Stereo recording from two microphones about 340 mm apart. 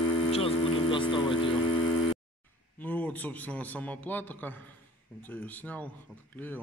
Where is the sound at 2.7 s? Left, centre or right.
Centre.